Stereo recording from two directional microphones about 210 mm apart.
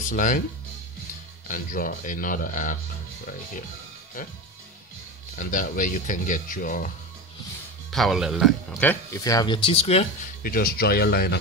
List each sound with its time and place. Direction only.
0.0 s speech: 40° left (ahead or behind)
1.5 s speech: 40° left (ahead or behind)
5.4 s speech: 40° left (ahead or behind)
7.9 s speech: centre (ahead or behind); by 10.0 s 30° left (ahead or behind)
10.4 s speech: 45° left (ahead or behind)